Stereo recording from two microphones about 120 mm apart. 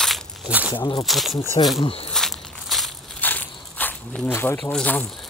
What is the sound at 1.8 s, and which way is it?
Speech, 55° left (ahead or behind).